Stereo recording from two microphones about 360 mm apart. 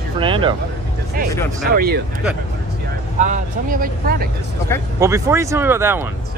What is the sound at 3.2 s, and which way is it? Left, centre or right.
Speech, right.